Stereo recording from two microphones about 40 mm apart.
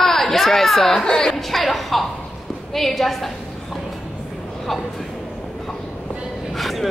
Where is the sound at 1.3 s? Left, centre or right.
Centre.